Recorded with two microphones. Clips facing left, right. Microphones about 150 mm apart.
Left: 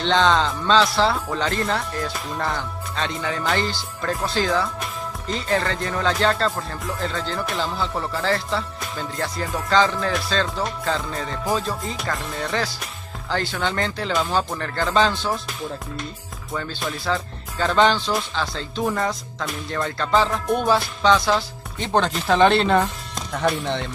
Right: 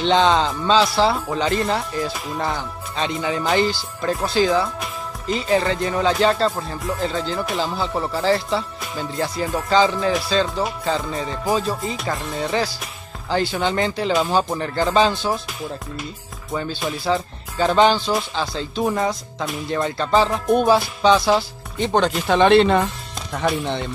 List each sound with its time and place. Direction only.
0.0 s speech: 10° right (ahead or behind)
12.2 s speech: centre (ahead or behind)
13.3 s speech: 10° right (ahead or behind)
17.0 s speech: 20° right (ahead or behind)
19.0 s speech: centre (ahead or behind)
19.7 s speech: 15° right (ahead or behind)
21.7 s speech: centre (ahead or behind)